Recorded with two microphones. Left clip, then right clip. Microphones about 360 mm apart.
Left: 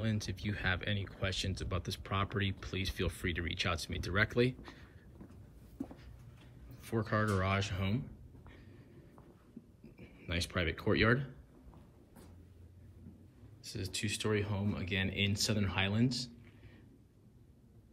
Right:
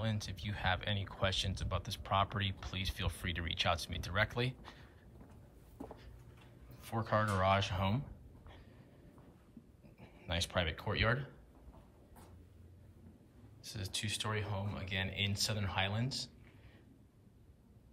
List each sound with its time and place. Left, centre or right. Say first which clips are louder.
0.0 s speech: left 2 dB; centre
6.8 s speech: even; centre
10.1 s speech: right 1 dB; centre
13.6 s speech: left 1 dB; centre